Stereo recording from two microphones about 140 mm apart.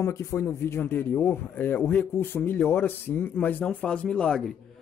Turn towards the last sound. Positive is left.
turn(degrees=5)  # may be behind; listen again after turning